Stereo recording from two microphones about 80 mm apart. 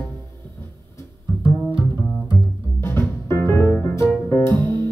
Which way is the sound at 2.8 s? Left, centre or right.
Left.